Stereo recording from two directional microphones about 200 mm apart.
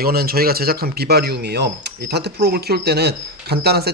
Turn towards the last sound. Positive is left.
turn(degrees=-55)  # may be behind; listen again after turning